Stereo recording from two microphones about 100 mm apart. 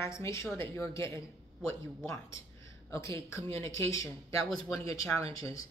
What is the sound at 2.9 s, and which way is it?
Speech, 30° left (ahead or behind).